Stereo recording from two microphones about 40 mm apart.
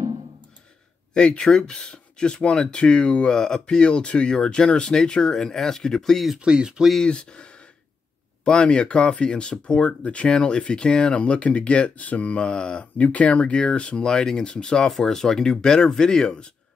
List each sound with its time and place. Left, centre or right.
1.1 s speech: left
6.4 s speech: right
7.0 s speech: left
12.9 s speech: left
14.0 s speech: centre